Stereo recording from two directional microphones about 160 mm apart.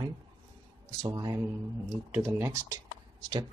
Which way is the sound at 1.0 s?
25° right (ahead or behind).